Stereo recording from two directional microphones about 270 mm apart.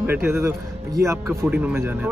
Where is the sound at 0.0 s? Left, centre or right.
Centre.